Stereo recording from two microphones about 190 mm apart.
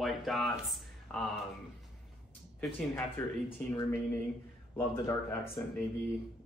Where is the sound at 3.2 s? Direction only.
10° left (ahead or behind).